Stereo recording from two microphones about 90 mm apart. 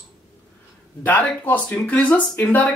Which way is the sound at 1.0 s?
20° left (ahead or behind).